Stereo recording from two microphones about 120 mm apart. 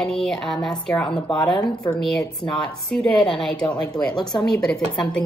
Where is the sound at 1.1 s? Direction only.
45° left (ahead or behind).